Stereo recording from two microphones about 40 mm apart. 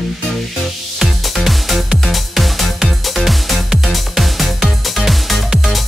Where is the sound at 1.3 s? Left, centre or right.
Centre.